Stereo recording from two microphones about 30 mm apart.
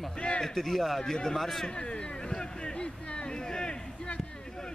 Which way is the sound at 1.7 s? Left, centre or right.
Left.